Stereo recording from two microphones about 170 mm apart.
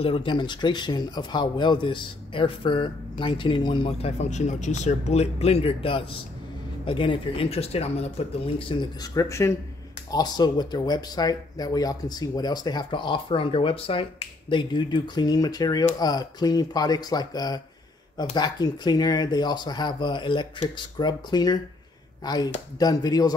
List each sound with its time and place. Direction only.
0.0 s a man's voice: 30° left (ahead or behind)
9.1 s a man's voice: 20° left (ahead or behind)